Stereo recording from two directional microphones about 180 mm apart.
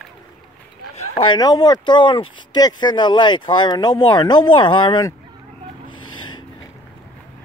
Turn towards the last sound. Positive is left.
turn(degrees=25)  # may be behind; listen again after turning